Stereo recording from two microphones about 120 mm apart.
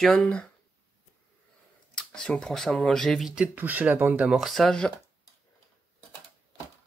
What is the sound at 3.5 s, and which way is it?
Speech, 15° right (ahead or behind).